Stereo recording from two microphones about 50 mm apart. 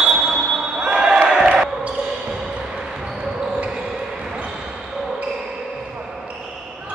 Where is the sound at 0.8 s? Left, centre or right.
Centre.